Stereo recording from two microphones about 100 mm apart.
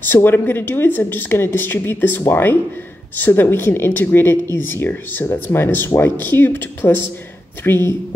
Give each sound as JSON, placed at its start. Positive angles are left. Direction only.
{"t": 0.0, "sound": "speech", "side_deg": 20}